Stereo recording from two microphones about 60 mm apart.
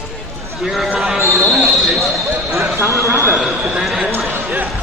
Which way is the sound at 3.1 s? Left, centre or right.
Right.